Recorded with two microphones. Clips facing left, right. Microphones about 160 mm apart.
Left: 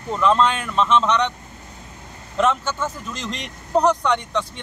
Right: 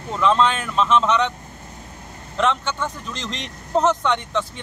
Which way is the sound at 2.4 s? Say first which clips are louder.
Left 1 dB; 5° left (ahead or behind).